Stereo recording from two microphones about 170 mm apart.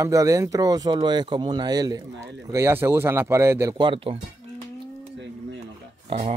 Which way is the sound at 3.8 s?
30° right (ahead or behind).